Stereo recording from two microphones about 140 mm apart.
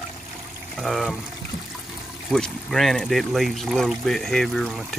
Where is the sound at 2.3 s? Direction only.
5° left (ahead or behind).